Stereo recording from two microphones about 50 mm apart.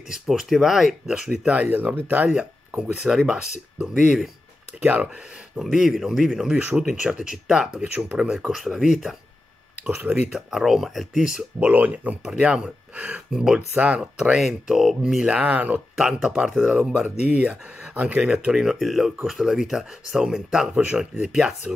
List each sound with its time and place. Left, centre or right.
0.1 s speech: centre
1.5 s speech: right
2.9 s speech: centre
5.6 s speech: centre
9.8 s speech: right
10.3 s speech: centre
11.6 s speech: right
12.3 s speech: centre
13.3 s speech: centre
13.7 s speech: right
14.3 s speech: centre
15.2 s speech: centre
16.0 s speech: centre